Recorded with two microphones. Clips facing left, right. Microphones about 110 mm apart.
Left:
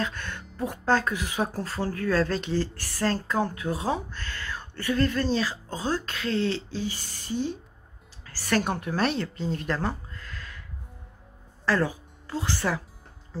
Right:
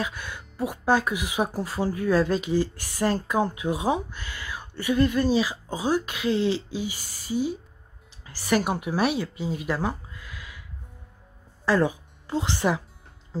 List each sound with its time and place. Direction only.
0.0 s speech: 10° right (ahead or behind)
11.6 s speech: 20° right (ahead or behind)